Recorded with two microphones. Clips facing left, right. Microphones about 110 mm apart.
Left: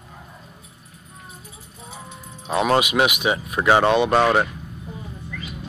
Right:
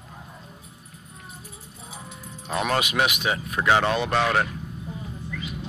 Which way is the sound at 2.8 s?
10° left (ahead or behind).